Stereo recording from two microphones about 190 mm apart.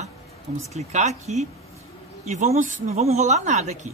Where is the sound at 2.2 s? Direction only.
35° right (ahead or behind).